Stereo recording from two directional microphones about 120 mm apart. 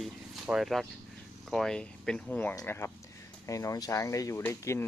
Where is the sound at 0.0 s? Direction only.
Centre (ahead or behind).